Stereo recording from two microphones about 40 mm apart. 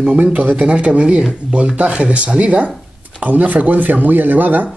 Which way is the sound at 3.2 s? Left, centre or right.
Right.